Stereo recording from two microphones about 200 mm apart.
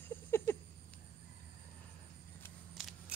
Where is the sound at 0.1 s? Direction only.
10° left (ahead or behind).